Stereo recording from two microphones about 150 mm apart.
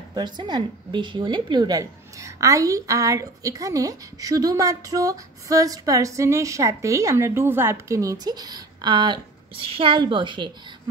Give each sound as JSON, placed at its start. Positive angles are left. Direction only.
{"t": 0.1, "sound": "a woman's voice", "side_deg": -30}